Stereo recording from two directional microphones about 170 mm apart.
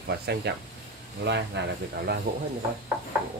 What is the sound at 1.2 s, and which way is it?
Speech, 90° right.